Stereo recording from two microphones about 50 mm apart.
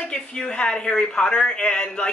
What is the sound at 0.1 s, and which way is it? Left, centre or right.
A woman's voice, centre.